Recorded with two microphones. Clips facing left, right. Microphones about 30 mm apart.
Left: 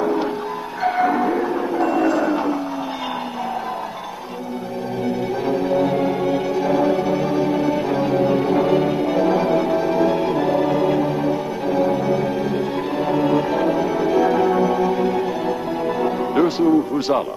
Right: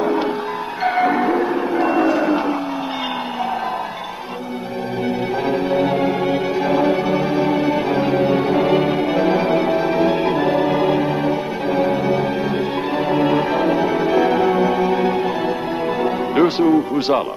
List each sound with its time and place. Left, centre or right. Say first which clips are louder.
0.8 s music: right 1 dB; right
5.5 s music: even; right
11.9 s music: right 1 dB; right
13.0 s music: right 1 dB; right